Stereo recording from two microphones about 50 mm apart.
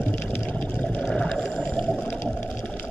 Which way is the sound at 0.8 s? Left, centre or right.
Left.